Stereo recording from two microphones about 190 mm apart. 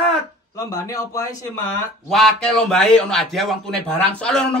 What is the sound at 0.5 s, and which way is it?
Speech, 15° left (ahead or behind).